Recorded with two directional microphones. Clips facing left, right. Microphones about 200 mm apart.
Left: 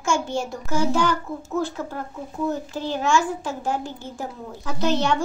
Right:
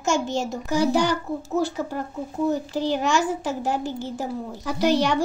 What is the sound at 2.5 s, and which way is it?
A child's voice, 15° right (ahead or behind).